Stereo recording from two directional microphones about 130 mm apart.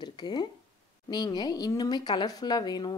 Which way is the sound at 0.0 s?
35° left (ahead or behind).